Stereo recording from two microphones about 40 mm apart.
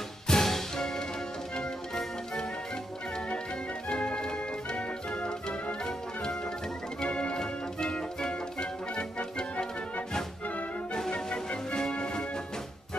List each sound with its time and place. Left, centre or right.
0.3 s music: centre
3.9 s music: left
7.0 s organ: left
8.2 s music: centre
11.0 s music: centre